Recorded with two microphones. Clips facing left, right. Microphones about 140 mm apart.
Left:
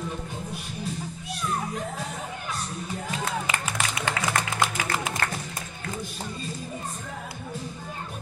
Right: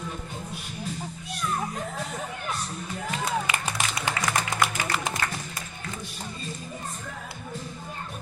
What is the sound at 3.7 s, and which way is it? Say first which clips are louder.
Music: left 1 dB; 15° right (ahead or behind).